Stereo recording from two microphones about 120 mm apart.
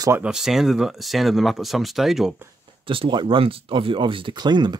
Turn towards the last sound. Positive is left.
turn(degrees=-35)  # may be behind; listen again after turning